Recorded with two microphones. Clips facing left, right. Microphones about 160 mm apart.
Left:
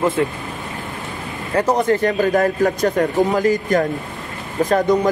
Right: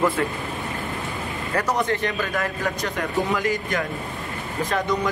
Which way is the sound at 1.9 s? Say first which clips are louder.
Left 9 dB; 40° left (ahead or behind).